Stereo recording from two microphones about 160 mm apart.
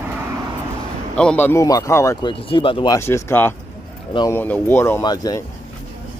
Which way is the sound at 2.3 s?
35° left (ahead or behind).